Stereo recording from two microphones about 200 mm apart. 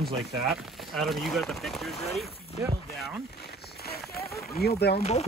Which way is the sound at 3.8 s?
50° left (ahead or behind).